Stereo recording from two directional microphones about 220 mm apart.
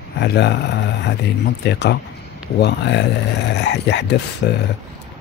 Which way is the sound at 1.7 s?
50° left (ahead or behind).